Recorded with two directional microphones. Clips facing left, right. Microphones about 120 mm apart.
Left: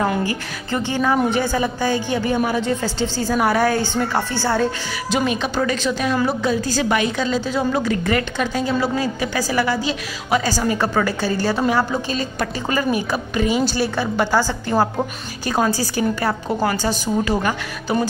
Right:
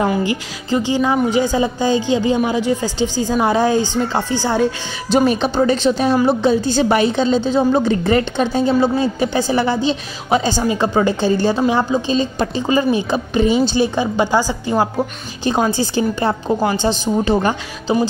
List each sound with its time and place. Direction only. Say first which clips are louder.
0.2 s a woman's voice: right 3 dB; 20° right (ahead or behind)
5.1 s a woman's voice: right 6 dB; 35° right (ahead or behind); by 15.0 s 10° right (ahead or behind)
15.4 s a woman's voice: right 3 dB; 20° right (ahead or behind)